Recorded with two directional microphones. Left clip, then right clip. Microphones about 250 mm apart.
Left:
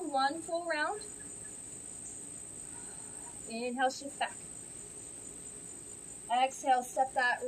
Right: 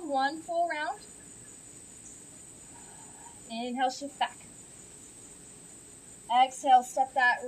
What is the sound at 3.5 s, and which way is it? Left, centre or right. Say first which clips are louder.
Child singing: right 2 dB; centre.